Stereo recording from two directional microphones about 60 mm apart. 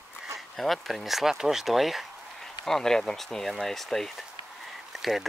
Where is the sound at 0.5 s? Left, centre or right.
Centre.